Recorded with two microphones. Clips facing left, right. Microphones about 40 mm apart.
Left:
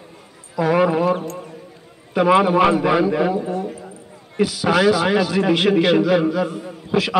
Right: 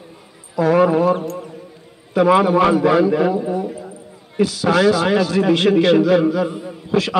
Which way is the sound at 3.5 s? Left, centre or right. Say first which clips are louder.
Right 2 dB; centre.